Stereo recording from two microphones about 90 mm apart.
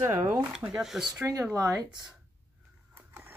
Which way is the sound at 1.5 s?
35° right (ahead or behind).